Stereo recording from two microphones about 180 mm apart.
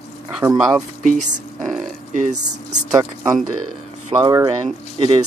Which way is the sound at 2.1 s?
45° right (ahead or behind).